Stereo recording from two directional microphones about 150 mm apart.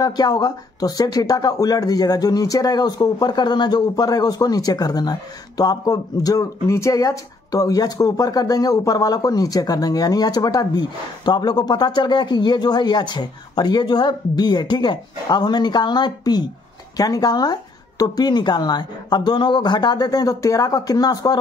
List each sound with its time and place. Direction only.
0.0 s speech: 25° left (ahead or behind)